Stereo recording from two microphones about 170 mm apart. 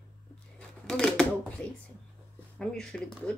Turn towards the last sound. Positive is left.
turn(degrees=5)  # may be behind; listen again after turning